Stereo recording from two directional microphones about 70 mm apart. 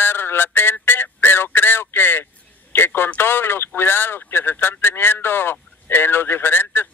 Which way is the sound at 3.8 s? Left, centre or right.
Left.